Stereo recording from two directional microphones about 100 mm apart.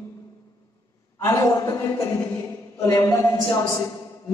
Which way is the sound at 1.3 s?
30° left (ahead or behind).